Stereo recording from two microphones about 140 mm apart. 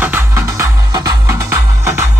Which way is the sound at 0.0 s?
20° right (ahead or behind).